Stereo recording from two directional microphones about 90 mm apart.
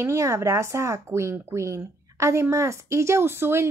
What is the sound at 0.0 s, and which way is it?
Speech, 35° right (ahead or behind).